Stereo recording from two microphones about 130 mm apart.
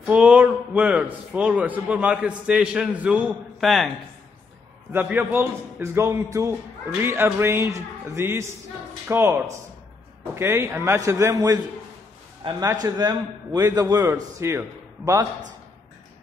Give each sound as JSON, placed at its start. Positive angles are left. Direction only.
{"t": 0.0, "sound": "a man's voice", "side_deg": -10}
{"t": 3.3, "sound": "a man's voice", "side_deg": 0}
{"t": 4.9, "sound": "a man's voice", "side_deg": -15}
{"t": 12.4, "sound": "a man's voice", "side_deg": -40}
{"t": 12.8, "sound": "a man's voice", "side_deg": -30}